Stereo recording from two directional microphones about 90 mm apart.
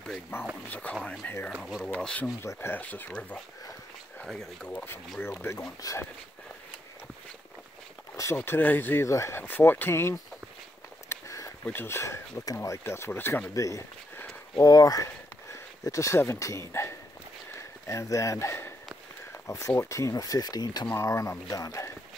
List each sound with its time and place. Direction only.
0.3 s a sound: 25° left (ahead or behind)
1.6 s speech: centre (ahead or behind)
1.9 s speech: 15° left (ahead or behind)
2.4 s speech: 25° left (ahead or behind)
4.2 s speech: 5° left (ahead or behind)
5.2 s speech: 25° left (ahead or behind)
5.6 s speech: 40° left (ahead or behind)
8.5 s speech: 20° left (ahead or behind)
11.1 s a sound: 35° left (ahead or behind)
11.6 s speech: 25° left (ahead or behind)
13.6 s speech: 35° left (ahead or behind)
20.9 s speech: 35° left (ahead or behind)